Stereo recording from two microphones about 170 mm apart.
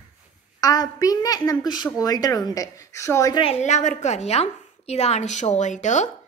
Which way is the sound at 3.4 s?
40° left (ahead or behind).